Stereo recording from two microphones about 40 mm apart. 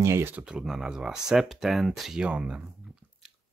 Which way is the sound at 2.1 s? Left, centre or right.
Right.